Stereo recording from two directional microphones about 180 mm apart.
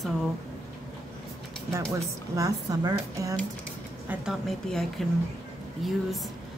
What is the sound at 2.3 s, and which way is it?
Speech, 20° right (ahead or behind).